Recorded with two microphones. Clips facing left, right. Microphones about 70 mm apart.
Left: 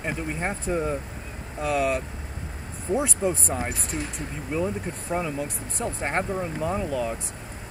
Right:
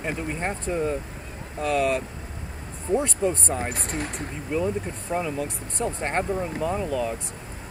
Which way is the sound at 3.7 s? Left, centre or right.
Right.